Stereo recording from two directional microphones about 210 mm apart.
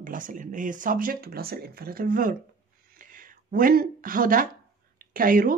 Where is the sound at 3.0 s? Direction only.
40° right (ahead or behind).